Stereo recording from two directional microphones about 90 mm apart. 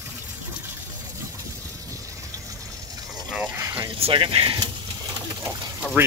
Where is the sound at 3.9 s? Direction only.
80° right.